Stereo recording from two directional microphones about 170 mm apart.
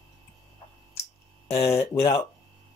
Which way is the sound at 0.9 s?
35° left (ahead or behind).